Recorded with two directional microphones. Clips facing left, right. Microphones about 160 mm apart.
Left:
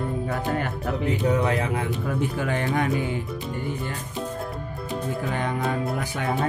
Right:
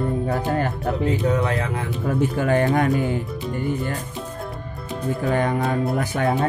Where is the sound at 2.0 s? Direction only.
45° right (ahead or behind).